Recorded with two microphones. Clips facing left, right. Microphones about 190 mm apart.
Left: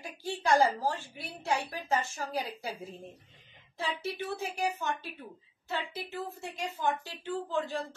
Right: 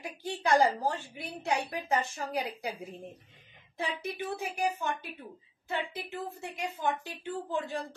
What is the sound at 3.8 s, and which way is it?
Speech, 15° right (ahead or behind).